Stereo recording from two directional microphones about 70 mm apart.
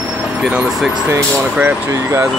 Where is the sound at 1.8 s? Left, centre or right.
Right.